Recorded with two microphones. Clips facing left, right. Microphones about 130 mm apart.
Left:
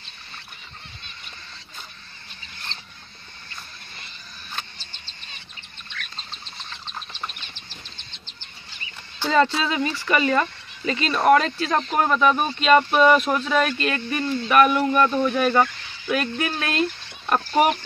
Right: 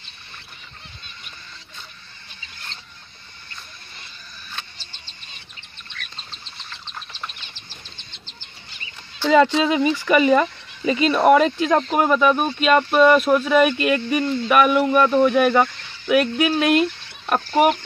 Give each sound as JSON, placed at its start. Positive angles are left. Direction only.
{"t": 9.3, "sound": "speech", "side_deg": -15}